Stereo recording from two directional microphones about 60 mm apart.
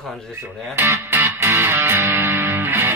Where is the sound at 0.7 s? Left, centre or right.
Right.